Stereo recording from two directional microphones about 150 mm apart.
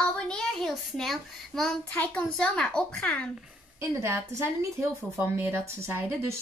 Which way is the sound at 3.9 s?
20° right (ahead or behind).